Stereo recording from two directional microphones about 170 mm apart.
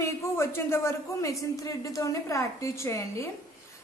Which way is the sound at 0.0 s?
15° left (ahead or behind).